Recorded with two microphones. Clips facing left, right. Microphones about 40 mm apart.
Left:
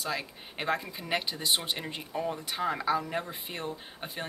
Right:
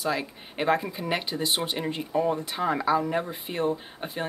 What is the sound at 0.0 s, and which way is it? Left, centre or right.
Speech, centre.